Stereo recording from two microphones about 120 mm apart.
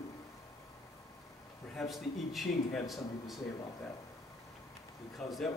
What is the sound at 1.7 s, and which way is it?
A man's voice, centre (ahead or behind).